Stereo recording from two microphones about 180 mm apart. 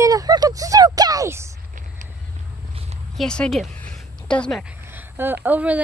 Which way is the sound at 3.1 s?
5° left (ahead or behind).